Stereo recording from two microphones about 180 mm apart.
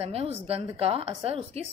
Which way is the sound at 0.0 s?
35° right (ahead or behind).